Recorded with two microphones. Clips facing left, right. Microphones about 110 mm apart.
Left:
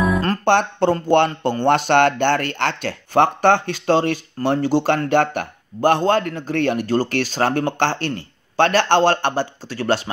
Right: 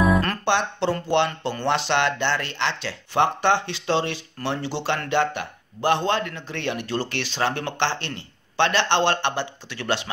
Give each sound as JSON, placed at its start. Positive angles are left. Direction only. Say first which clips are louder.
{"t": 0.5, "sound": "speech", "louder": "left 7 dB", "side_deg": 50}